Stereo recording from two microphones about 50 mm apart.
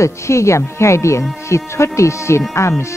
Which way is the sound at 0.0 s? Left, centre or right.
Left.